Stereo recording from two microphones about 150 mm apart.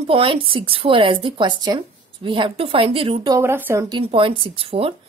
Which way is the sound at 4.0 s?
35° right (ahead or behind).